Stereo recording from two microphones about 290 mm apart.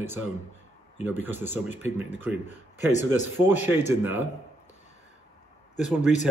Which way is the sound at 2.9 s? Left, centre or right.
Left.